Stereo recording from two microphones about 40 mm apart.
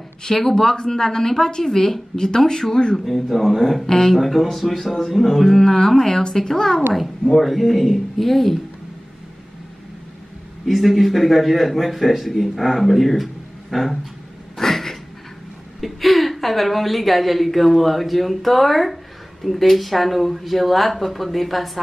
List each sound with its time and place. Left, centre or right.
0.2 s speech: centre
3.1 s a man's voice: centre
10.7 s a man's voice: centre
14.6 s a sound: centre
15.8 s a woman's voice: centre